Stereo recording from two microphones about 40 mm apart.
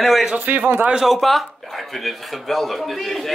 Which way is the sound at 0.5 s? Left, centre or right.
Right.